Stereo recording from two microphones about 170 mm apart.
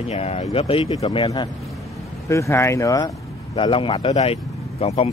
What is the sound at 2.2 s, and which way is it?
Speech, 15° left (ahead or behind).